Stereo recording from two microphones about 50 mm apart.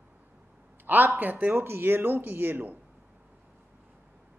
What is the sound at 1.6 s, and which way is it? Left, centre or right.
Speech, right.